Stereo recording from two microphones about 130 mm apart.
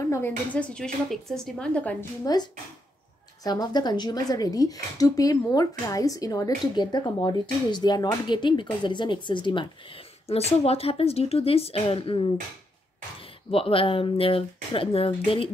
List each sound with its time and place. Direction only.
0.0 s a sound: 25° left (ahead or behind)
0.5 s speech: 10° left (ahead or behind)
2.2 s a woman's voice: 30° left (ahead or behind)
13.5 s a woman's voice: 45° left (ahead or behind)